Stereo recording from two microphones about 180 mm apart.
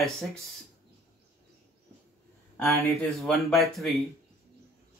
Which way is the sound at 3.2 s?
Centre (ahead or behind).